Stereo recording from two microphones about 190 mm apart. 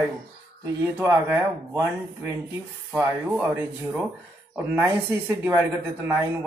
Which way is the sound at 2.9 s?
5° right (ahead or behind).